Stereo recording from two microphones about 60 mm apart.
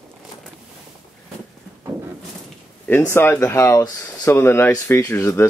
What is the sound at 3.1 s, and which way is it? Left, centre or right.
Speech, left.